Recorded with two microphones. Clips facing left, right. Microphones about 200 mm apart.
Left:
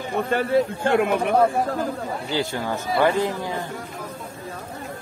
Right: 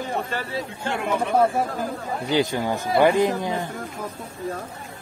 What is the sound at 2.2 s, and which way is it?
Speech, 15° right (ahead or behind).